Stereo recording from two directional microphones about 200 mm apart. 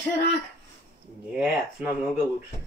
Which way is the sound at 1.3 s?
5° right (ahead or behind).